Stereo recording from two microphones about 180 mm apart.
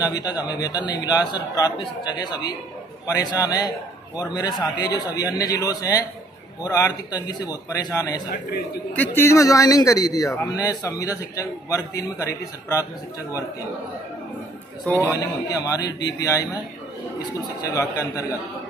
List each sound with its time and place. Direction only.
0.0 s a man's voice: 20° left (ahead or behind)
8.9 s a man's voice: 10° left (ahead or behind)
15.1 s a man's voice: 20° left (ahead or behind)